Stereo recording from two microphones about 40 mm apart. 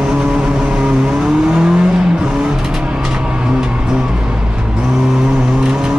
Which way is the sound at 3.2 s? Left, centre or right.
Right.